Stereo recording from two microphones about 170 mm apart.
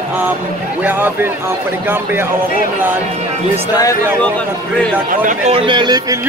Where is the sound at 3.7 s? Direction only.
20° left (ahead or behind).